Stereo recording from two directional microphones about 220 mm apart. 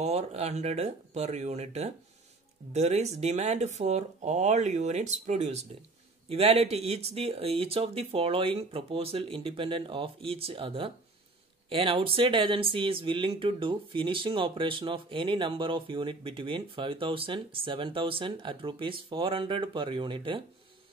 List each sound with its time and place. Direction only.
0.0 s speech: 30° right (ahead or behind)